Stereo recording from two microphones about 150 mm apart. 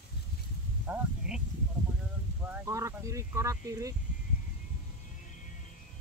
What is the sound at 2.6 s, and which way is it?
Speech, 20° right (ahead or behind).